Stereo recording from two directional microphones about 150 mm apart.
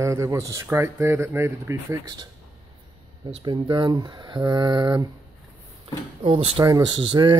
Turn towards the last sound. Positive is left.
turn(degrees=-30)  # may be behind; listen again after turning